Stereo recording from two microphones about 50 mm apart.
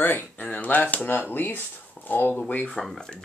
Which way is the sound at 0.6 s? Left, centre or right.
Left.